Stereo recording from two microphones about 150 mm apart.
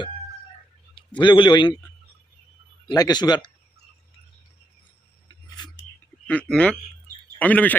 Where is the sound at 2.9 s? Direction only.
30° left (ahead or behind).